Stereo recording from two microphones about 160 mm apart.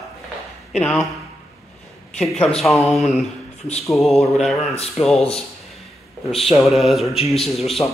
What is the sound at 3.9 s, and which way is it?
A man's voice, centre (ahead or behind).